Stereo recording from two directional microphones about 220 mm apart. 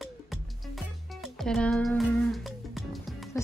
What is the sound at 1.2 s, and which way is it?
Music, centre (ahead or behind).